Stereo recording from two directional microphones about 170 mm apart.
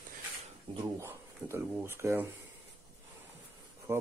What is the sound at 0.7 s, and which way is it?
Speech, 15° right (ahead or behind).